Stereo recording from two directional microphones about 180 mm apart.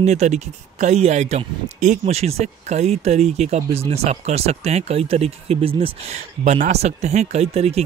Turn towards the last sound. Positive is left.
turn(degrees=-35)  # may be behind; listen again after turning